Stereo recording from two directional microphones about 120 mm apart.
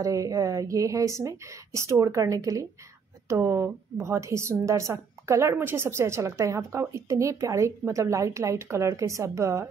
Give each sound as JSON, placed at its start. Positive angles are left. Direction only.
{"t": 0.0, "sound": "a woman's voice", "side_deg": -30}